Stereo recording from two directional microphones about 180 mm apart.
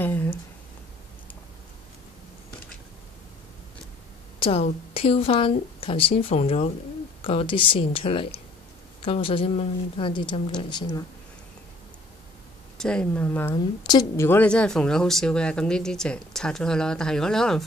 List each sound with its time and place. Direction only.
0.0 s speech: 10° left (ahead or behind)
4.4 s a woman's voice: 35° left (ahead or behind)
12.7 s speech: 5° left (ahead or behind)
13.8 s speech: 25° left (ahead or behind)
14.2 s speech: 10° left (ahead or behind)